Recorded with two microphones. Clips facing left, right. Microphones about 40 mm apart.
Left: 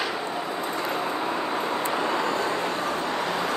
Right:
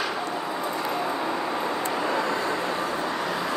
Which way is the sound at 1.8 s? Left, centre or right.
Left.